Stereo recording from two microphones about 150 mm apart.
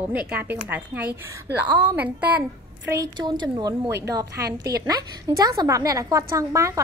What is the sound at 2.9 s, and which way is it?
A woman's voice, 25° right (ahead or behind).